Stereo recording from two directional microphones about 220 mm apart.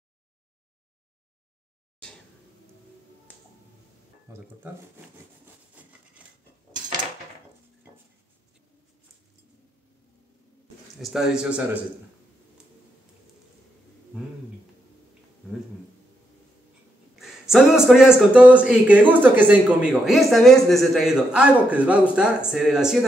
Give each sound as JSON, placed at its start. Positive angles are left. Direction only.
{"t": 4.3, "sound": "speech", "side_deg": -15}
{"t": 5.8, "sound": "wood", "side_deg": -5}
{"t": 11.0, "sound": "speech", "side_deg": 0}
{"t": 17.1, "sound": "speech", "side_deg": 0}